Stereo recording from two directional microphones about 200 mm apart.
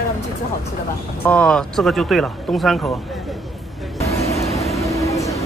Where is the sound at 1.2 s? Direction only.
5° left (ahead or behind).